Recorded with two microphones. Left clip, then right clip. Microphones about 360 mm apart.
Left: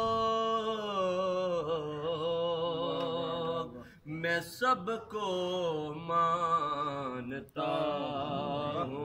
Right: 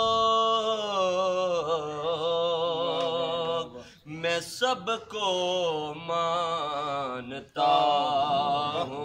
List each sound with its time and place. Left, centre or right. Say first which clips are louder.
0.0 s mantra: right 7 dB; centre
2.4 s music: right 6 dB; centre
4.2 s a sound: right 4 dB; centre
6.2 s mantra: right 1 dB; centre